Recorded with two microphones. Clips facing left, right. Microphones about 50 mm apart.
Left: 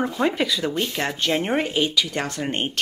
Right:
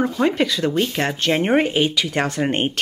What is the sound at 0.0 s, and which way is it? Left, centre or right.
Speech, centre.